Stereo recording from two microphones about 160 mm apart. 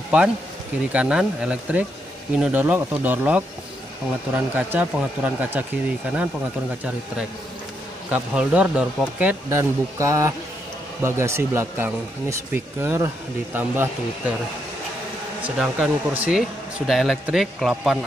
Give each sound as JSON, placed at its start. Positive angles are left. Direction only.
{"t": 0.9, "sound": "speech", "side_deg": -5}
{"t": 4.6, "sound": "speech", "side_deg": -10}
{"t": 8.1, "sound": "speech", "side_deg": -5}
{"t": 15.4, "sound": "speech", "side_deg": -5}